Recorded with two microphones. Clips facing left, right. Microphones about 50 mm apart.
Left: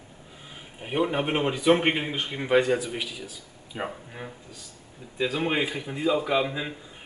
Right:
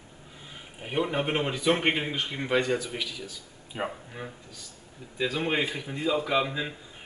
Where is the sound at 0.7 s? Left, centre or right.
Centre.